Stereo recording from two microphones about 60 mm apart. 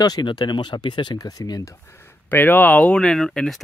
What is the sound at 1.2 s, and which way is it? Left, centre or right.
Speech, left.